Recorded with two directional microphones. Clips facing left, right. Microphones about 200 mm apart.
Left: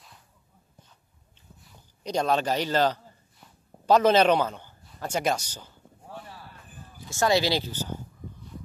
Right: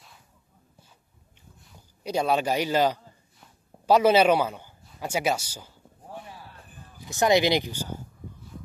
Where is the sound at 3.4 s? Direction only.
10° right (ahead or behind).